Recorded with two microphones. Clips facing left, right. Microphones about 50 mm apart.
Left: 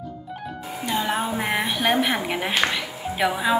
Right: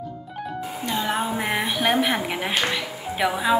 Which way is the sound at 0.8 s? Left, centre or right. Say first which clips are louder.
Left 1 dB; centre.